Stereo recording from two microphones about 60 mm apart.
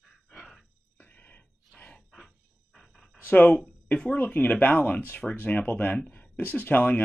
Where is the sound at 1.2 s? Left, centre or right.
Left.